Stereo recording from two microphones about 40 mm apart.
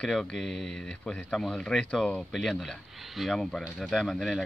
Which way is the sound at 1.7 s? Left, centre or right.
Left.